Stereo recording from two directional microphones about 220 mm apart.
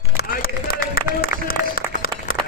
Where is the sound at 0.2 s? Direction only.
40° left (ahead or behind).